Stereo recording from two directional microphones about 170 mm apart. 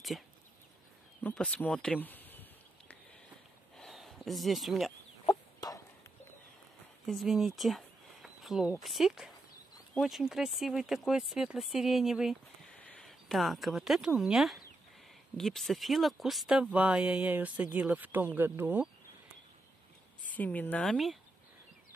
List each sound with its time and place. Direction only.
1.2 s speech: 5° left (ahead or behind)
3.7 s a sound: centre (ahead or behind)
5.2 s chicken: 20° left (ahead or behind)
7.1 s speech: centre (ahead or behind)
20.2 s speech: 10° left (ahead or behind)